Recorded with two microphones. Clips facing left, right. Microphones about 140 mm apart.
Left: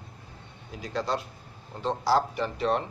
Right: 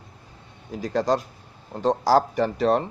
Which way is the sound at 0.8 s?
40° right (ahead or behind).